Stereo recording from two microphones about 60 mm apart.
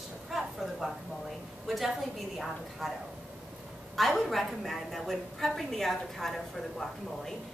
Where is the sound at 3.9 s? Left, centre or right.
Centre.